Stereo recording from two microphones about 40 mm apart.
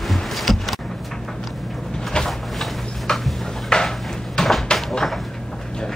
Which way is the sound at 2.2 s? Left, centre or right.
Left.